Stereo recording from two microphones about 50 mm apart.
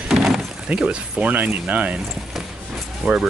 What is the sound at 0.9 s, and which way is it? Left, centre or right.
Speech, right.